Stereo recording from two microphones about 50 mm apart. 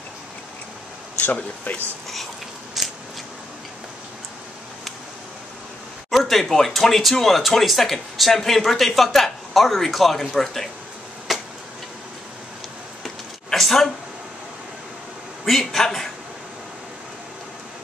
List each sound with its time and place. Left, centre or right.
1.2 s speech: left
2.8 s biting: centre
6.0 s speech: centre
11.3 s tick-tock: centre
13.0 s a sound: centre
15.4 s speech: centre